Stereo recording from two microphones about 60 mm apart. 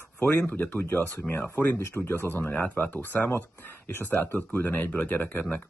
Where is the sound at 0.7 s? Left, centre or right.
Left.